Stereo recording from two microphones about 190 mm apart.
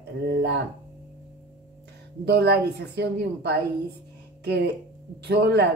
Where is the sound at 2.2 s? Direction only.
60° right (ahead or behind).